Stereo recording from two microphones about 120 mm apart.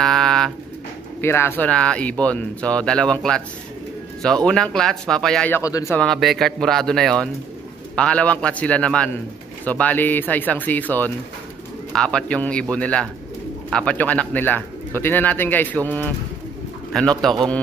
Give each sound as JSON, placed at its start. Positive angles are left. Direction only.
{"t": 0.0, "sound": "pigeon", "side_deg": 5}
{"t": 1.2, "sound": "speech", "side_deg": 20}
{"t": 4.5, "sound": "speech", "side_deg": 10}
{"t": 5.6, "sound": "speech", "side_deg": 30}
{"t": 6.1, "sound": "speech", "side_deg": 0}